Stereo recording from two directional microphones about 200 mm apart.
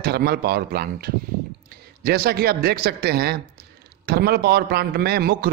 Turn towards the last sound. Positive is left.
turn(degrees=-50)  # may be behind; listen again after turning